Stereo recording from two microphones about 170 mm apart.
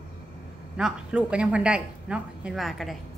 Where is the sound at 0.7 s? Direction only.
5° right (ahead or behind).